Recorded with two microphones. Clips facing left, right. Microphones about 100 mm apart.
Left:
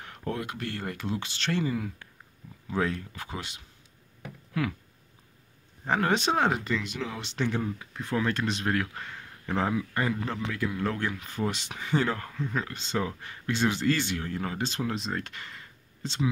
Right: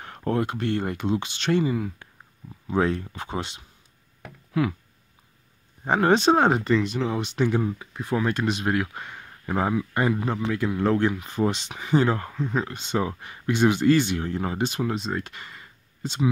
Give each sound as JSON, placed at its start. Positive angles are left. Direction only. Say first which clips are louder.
{"t": 0.0, "sound": "speech", "louder": "right 8 dB", "side_deg": -40}
{"t": 2.7, "sound": "speech", "louder": "right 6 dB", "side_deg": -30}
{"t": 4.6, "sound": "speech", "louder": "right 6 dB", "side_deg": -15}
{"t": 5.9, "sound": "speech", "louder": "right 7 dB", "side_deg": -30}
{"t": 7.2, "sound": "speech", "louder": "right 5 dB", "side_deg": -15}
{"t": 14.7, "sound": "speech", "louder": "right 4 dB", "side_deg": -5}